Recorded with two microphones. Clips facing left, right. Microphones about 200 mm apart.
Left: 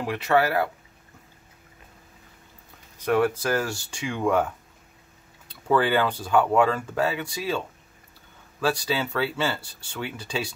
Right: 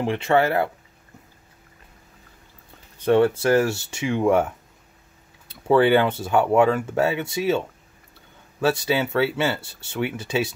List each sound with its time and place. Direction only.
0.0 s speech: 25° right (ahead or behind)
3.0 s speech: 30° right (ahead or behind)
5.5 s speech: 25° right (ahead or behind)